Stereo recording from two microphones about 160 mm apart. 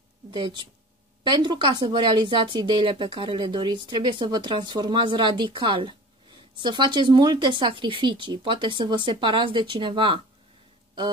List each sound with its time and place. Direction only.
0.3 s speech: 30° right (ahead or behind)